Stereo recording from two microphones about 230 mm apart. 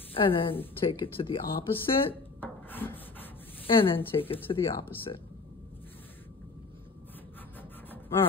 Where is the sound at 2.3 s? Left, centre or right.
Centre.